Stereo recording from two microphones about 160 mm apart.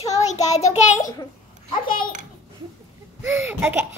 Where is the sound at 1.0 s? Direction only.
20° left (ahead or behind).